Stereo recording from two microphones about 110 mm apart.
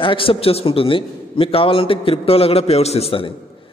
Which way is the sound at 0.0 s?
55° left (ahead or behind).